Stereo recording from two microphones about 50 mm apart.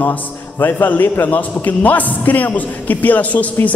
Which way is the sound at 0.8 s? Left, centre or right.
Left.